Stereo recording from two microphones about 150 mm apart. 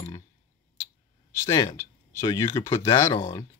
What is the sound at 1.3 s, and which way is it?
Speech, 20° left (ahead or behind).